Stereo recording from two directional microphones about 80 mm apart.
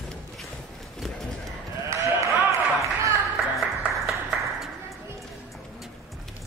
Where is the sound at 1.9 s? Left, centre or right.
Right.